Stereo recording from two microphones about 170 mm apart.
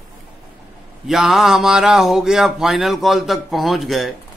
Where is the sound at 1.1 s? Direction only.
Centre (ahead or behind).